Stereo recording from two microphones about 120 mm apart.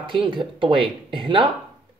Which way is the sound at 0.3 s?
40° right (ahead or behind).